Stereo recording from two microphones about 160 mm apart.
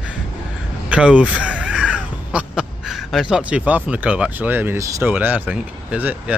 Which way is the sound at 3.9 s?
5° right (ahead or behind).